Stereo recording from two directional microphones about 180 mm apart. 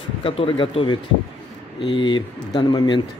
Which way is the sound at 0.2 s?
30° left (ahead or behind).